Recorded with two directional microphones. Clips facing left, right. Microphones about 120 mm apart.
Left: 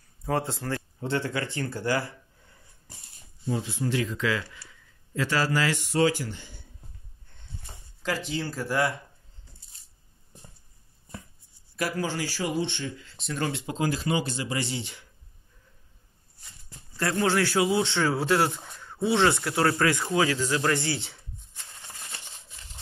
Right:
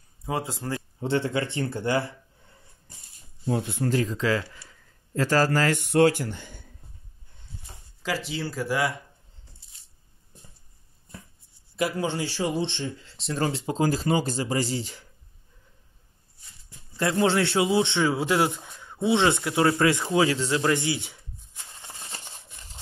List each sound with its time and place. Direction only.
0.2 s speech: 5° right (ahead or behind)
1.0 s a man's voice: 25° right (ahead or behind)
3.4 s speech: 55° right (ahead or behind)
4.0 s speech: 35° right (ahead or behind); by 6.7 s 50° right (ahead or behind)
8.3 s speech: 5° right (ahead or behind)
11.7 s speech: 25° right (ahead or behind)
16.9 s a man's voice: 20° right (ahead or behind)
21.8 s a sound: 20° right (ahead or behind)